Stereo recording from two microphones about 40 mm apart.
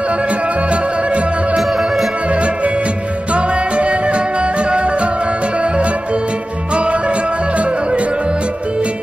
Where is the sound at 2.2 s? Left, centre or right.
Right.